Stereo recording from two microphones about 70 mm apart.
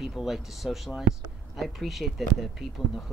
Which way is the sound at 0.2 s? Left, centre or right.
Centre.